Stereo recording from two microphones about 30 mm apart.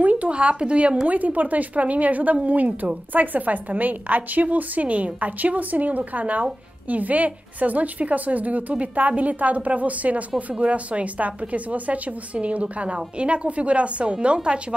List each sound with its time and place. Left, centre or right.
0.0 s a sound: right
0.3 s a woman's voice: right
1.0 s a woman's voice: right
12.9 s a woman's voice: right